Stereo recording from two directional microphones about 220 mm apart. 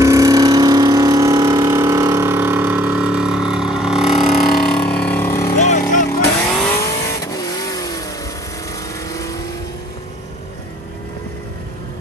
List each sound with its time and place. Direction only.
0.0 s vehicle: 15° right (ahead or behind); by 5.5 s 10° left (ahead or behind)
5.6 s vehicle: 35° left (ahead or behind)
6.8 s vehicle: 15° left (ahead or behind)
9.1 s vehicle: 15° left (ahead or behind)